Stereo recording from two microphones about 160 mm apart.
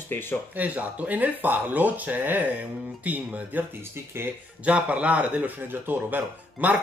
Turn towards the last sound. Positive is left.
turn(degrees=-10)  # may be behind; listen again after turning